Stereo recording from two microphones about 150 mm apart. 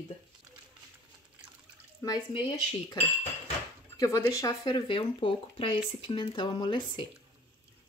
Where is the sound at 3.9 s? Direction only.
20° left (ahead or behind).